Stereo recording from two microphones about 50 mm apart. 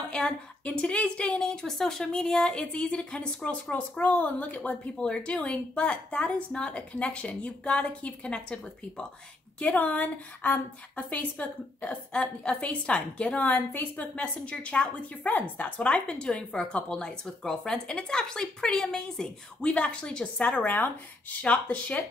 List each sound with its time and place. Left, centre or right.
0.1 s a woman's voice: centre
5.0 s speech: left
9.6 s speech: left
13.4 s speech: left
14.1 s speech: left
15.9 s a woman's voice: centre
19.6 s speech: left